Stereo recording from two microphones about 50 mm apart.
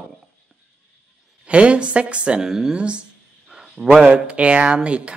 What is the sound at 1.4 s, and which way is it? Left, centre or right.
Speech, right.